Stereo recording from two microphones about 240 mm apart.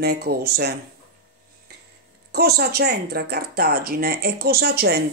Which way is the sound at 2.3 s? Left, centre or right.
Right.